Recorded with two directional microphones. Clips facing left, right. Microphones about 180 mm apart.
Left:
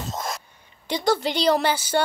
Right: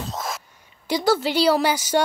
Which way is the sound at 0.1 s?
Centre (ahead or behind).